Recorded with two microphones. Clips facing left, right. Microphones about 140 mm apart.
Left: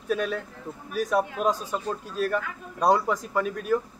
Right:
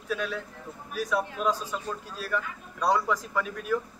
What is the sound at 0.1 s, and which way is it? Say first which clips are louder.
Speech: left 4 dB; 45° left (ahead or behind).